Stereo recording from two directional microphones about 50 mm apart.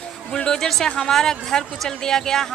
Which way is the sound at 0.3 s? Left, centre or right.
Centre.